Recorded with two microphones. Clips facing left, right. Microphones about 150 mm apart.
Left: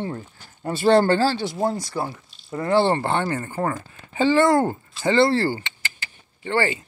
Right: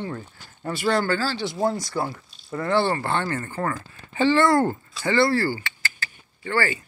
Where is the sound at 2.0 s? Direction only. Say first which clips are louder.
Even; 20° left (ahead or behind).